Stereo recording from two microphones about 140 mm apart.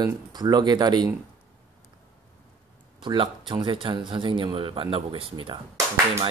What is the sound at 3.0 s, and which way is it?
Speech, 35° right (ahead or behind).